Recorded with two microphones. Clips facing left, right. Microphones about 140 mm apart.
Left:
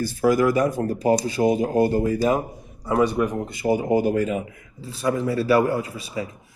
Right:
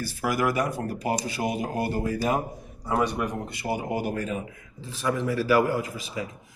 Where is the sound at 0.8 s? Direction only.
40° left (ahead or behind).